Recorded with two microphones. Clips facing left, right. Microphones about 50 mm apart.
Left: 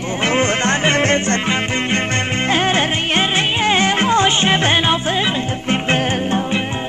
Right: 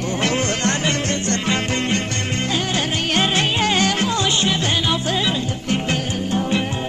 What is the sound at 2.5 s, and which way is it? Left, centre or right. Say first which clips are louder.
Music: left 7 dB; left.